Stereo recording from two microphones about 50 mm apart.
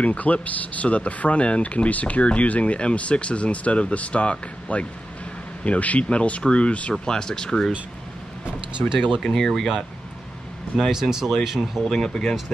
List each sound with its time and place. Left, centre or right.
0.0 s speech: left; by 7.7 s centre
8.8 s speech: left
9.2 s speech: centre
10.9 s speech: centre
11.9 s speech: centre